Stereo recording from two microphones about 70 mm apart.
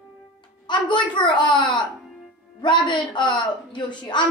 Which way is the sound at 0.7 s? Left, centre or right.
Left.